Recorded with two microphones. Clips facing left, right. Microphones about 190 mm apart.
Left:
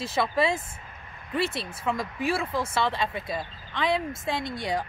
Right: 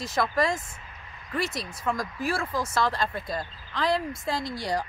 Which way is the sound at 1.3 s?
30° left (ahead or behind).